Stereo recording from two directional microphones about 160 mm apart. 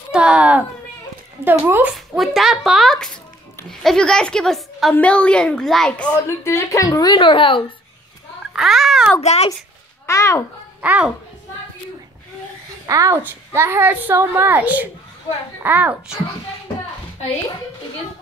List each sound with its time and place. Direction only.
0.1 s a sound: 5° right (ahead or behind)
1.4 s a woman's voice: 15° right (ahead or behind)
2.1 s a woman's voice: centre (ahead or behind)
6.1 s speech: 15° left (ahead or behind); by 7.6 s 30° left (ahead or behind)
8.5 s speech: centre (ahead or behind)
9.2 s a child's voice: 45° left (ahead or behind)
10.0 s a child's voice: 20° left (ahead or behind)
10.8 s a child's voice: 10° right (ahead or behind)
12.8 s a woman's voice: 20° right (ahead or behind)